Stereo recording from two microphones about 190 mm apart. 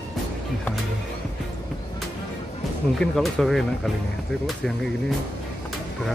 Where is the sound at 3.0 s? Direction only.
Centre (ahead or behind).